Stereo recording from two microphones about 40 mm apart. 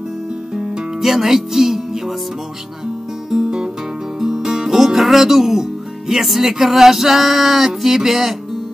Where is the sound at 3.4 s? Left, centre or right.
Right.